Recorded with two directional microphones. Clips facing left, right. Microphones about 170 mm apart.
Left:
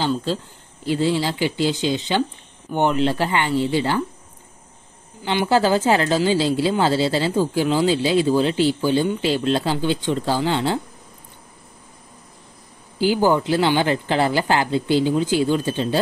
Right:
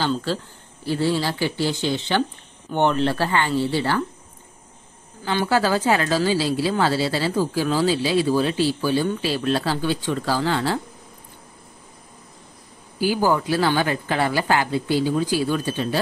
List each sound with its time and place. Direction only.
0.0 s speech: 15° left (ahead or behind)
5.2 s speech: 25° left (ahead or behind)
13.0 s speech: 25° left (ahead or behind)